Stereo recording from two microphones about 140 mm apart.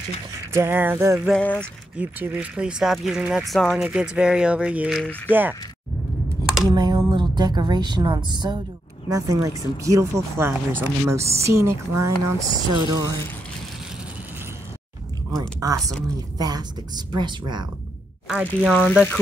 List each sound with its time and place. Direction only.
0.5 s speech: 15° right (ahead or behind)
1.3 s speech: 10° left (ahead or behind)
2.0 s speech: 10° right (ahead or behind)
5.3 s speech: 15° right (ahead or behind)
6.7 s a woman's voice: 30° right (ahead or behind)
15.6 s speech: 25° right (ahead or behind)
18.3 s speech: 10° right (ahead or behind)
18.7 s speech: 5° left (ahead or behind)